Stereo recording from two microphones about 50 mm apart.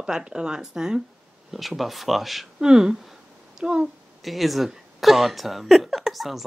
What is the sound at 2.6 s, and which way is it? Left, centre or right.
Speech, centre.